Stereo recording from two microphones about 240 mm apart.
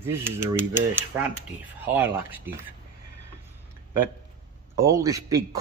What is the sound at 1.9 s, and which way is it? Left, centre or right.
Speech, centre.